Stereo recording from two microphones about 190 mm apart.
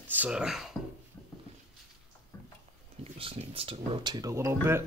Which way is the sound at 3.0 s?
30° right (ahead or behind).